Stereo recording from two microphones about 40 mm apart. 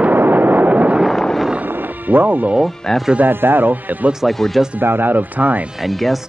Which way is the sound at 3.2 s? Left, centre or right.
Right.